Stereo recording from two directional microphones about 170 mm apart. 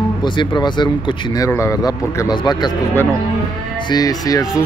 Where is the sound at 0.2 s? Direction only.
25° left (ahead or behind).